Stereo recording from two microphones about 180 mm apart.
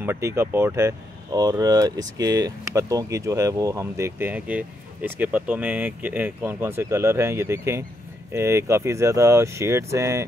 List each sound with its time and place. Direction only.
0.0 s speech: 15° right (ahead or behind)